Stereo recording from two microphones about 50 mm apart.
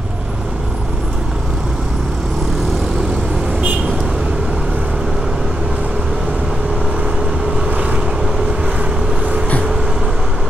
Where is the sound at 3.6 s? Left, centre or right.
Right.